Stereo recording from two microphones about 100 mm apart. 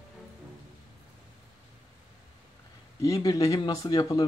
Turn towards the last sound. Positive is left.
turn(degrees=40)  # may be behind; listen again after turning